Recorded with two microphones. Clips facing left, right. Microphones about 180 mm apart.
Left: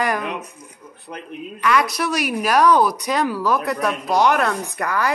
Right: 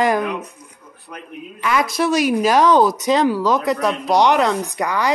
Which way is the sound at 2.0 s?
25° right (ahead or behind).